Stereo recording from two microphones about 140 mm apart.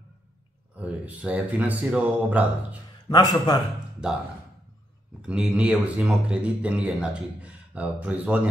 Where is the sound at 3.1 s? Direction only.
30° left (ahead or behind).